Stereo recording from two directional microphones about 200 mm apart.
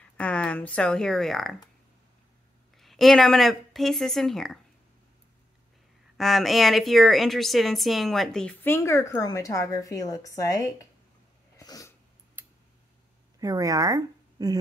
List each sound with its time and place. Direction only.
0.2 s speech: 5° left (ahead or behind)
2.8 s a woman's voice: centre (ahead or behind)
6.1 s speech: centre (ahead or behind); by 10.9 s 15° left (ahead or behind)
11.5 s sneeze: 15° left (ahead or behind)
12.4 s a sound: 10° right (ahead or behind)
13.4 s speech: 15° right (ahead or behind)